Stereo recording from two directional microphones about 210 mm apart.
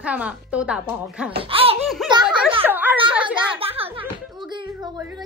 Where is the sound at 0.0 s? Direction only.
5° right (ahead or behind).